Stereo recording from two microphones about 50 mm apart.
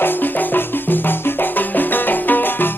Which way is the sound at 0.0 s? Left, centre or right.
Left.